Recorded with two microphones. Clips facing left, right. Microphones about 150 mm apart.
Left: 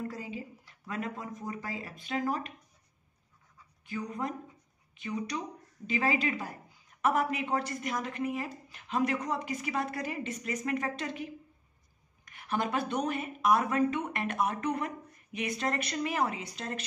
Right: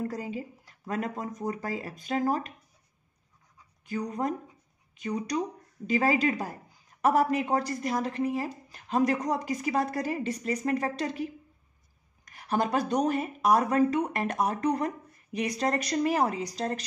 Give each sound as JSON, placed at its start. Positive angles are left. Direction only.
{"t": 0.1, "sound": "speech", "side_deg": -40}
{"t": 3.8, "sound": "a woman's voice", "side_deg": -40}
{"t": 12.3, "sound": "a woman's voice", "side_deg": -40}